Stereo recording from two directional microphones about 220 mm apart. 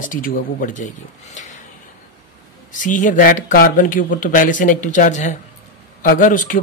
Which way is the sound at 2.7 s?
35° left (ahead or behind).